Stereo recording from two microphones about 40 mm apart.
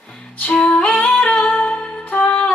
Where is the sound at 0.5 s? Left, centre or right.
Left.